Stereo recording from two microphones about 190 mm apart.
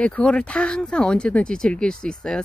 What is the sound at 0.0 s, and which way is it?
Speech, 5° left (ahead or behind).